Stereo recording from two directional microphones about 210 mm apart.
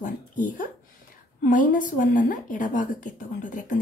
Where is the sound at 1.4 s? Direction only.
40° left (ahead or behind).